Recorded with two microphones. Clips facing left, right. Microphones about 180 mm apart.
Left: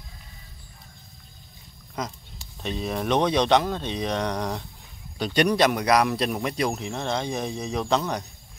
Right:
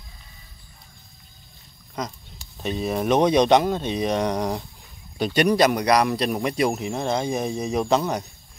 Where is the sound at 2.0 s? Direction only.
5° left (ahead or behind).